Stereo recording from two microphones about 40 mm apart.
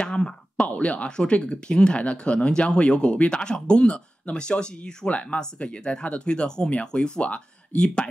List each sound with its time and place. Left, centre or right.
0.0 s speech: left
0.7 s speech: left
1.0 s speech: left